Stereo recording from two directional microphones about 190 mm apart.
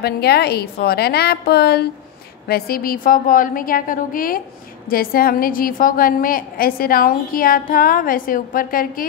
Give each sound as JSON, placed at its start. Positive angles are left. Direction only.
{"t": 0.0, "sound": "a woman's voice", "side_deg": 55}